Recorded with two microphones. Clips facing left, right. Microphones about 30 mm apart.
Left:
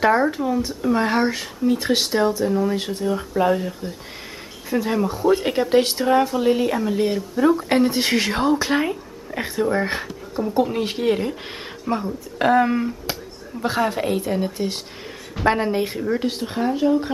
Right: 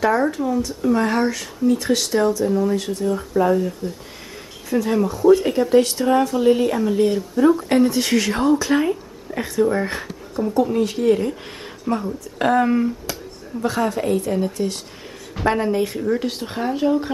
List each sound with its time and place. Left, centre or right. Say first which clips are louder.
0.0 s speech: left 1 dB; left
2.4 s speech: right 1 dB; centre
2.7 s speech: right 2 dB; left
6.0 s speech: right 1 dB; centre
13.0 s speech: left 1 dB; left
16.0 s speech: right 1 dB; centre